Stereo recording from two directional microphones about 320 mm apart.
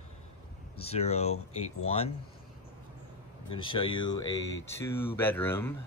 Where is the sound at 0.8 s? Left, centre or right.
Centre.